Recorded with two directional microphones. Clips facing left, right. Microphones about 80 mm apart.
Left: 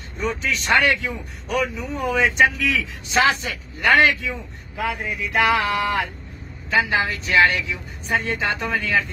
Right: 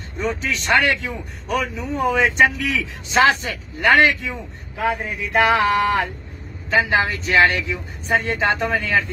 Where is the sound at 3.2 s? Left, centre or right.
Right.